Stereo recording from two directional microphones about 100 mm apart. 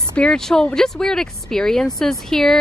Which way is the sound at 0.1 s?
10° left (ahead or behind).